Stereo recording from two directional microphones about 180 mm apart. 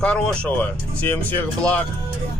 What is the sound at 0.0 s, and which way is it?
Speech, 5° left (ahead or behind).